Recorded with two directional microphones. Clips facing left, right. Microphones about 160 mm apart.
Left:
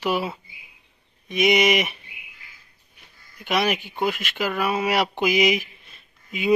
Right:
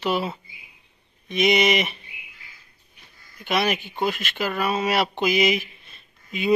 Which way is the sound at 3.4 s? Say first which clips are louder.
Even; 10° left (ahead or behind).